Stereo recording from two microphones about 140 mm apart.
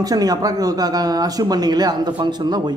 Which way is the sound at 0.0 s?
25° right (ahead or behind).